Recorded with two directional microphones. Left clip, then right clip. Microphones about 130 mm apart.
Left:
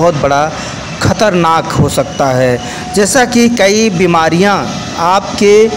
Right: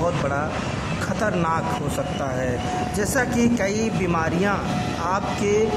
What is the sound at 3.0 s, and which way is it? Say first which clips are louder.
A man's voice: left 15 dB; 25° left (ahead or behind).